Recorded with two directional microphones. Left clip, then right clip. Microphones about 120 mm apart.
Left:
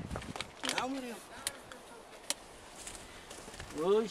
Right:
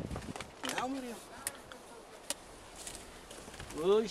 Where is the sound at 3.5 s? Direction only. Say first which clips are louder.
Left 2 dB; 15° left (ahead or behind).